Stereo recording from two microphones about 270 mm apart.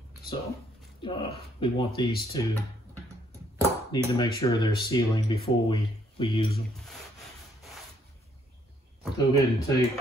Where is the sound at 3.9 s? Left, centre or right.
Centre.